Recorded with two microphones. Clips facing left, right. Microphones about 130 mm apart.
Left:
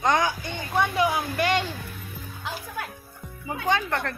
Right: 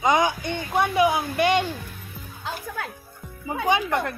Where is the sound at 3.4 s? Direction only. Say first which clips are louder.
Right 3 dB; 10° right (ahead or behind).